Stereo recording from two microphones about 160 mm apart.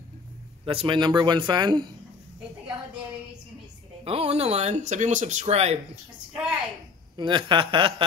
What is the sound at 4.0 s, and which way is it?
Speech, 40° right (ahead or behind).